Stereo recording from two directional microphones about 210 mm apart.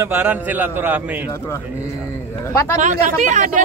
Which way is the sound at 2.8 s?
35° right (ahead or behind).